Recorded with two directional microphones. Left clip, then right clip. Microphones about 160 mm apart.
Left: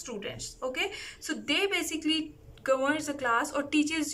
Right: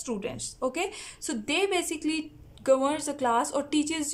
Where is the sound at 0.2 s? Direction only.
35° right (ahead or behind).